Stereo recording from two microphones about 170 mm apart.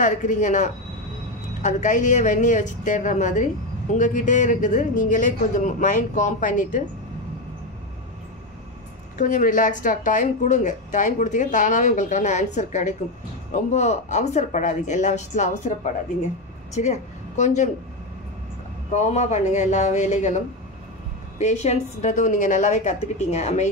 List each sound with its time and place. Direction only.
0.0 s a woman's voice: 45° left (ahead or behind)
9.2 s a woman's voice: 50° left (ahead or behind)
18.9 s a woman's voice: 45° left (ahead or behind)